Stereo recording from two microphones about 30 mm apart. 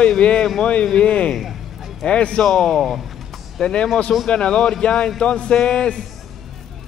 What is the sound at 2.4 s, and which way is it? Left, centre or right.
Speech, centre.